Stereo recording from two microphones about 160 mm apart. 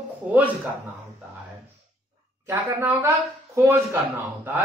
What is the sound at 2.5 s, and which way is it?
Speech, 15° right (ahead or behind).